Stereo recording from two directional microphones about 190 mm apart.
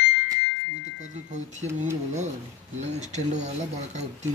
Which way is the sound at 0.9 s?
40° right (ahead or behind).